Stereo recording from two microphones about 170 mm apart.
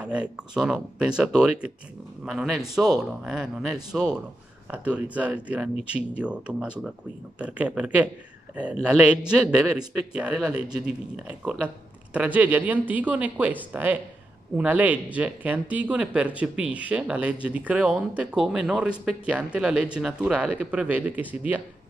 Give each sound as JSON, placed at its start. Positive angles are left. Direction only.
{"t": 0.0, "sound": "speech", "side_deg": -5}